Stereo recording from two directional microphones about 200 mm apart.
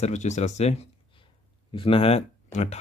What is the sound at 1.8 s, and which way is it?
Speech, 30° left (ahead or behind).